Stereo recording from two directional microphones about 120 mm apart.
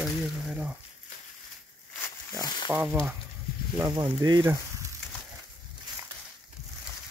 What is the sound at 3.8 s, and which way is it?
Speech, 30° right (ahead or behind).